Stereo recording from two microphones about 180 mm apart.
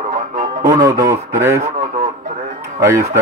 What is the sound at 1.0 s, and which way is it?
Speech, 15° right (ahead or behind).